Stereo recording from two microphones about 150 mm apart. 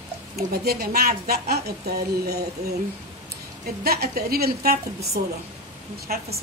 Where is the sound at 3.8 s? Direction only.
90° right.